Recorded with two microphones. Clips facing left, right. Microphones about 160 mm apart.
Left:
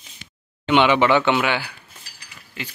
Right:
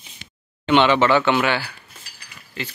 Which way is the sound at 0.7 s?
10° left (ahead or behind).